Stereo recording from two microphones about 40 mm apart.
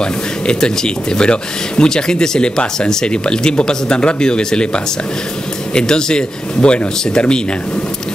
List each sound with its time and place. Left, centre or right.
0.0 s speech: left